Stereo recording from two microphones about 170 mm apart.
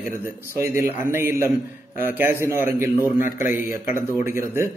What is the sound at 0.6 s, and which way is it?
A man's voice, 15° right (ahead or behind).